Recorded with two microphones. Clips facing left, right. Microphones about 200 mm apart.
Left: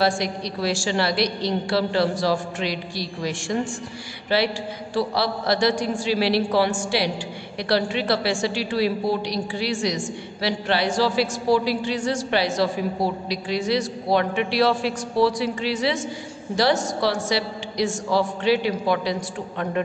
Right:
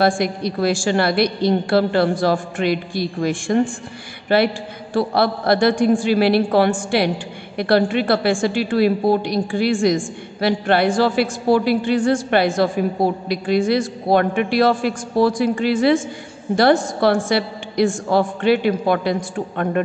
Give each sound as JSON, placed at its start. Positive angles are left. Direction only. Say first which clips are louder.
{"t": 0.0, "sound": "a woman's voice", "louder": "right 5 dB", "side_deg": -55}